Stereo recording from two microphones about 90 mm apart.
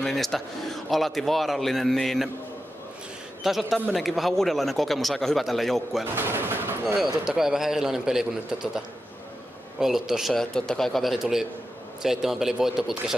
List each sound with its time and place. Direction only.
0.0 s a man's voice: 5° left (ahead or behind)
3.4 s a man's voice: centre (ahead or behind)
6.1 s gunshot: 25° right (ahead or behind)
7.2 s a man's voice: 5° right (ahead or behind)